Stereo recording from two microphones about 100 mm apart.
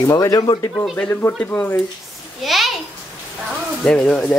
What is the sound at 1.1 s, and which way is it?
Speech, 20° left (ahead or behind).